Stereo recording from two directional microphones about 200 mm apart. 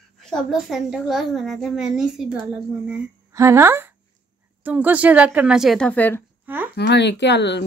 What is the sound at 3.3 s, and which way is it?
A woman's voice, 15° right (ahead or behind).